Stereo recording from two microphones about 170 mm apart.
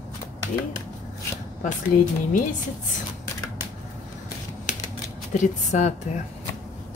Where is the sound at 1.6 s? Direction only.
50° left (ahead or behind).